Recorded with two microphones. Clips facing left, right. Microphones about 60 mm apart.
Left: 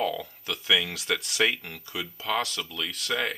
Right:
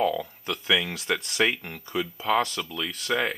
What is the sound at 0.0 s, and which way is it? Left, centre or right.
Speech, centre.